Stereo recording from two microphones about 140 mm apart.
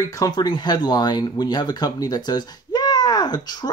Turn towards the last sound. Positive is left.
turn(degrees=30)  # may be behind; listen again after turning